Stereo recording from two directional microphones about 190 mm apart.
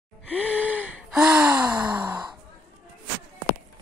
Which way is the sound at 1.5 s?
20° right (ahead or behind).